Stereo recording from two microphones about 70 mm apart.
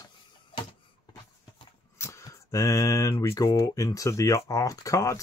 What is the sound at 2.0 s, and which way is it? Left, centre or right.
Speech, left.